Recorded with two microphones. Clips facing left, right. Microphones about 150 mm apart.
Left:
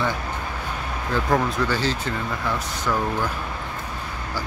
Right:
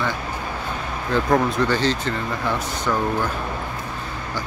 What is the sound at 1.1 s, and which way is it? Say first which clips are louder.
Speech: right 3 dB; 5° left (ahead or behind).